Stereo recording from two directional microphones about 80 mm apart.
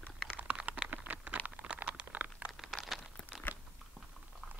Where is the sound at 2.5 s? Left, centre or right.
Centre.